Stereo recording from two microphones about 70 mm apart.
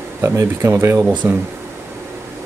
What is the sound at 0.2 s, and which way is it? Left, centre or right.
Speech, right.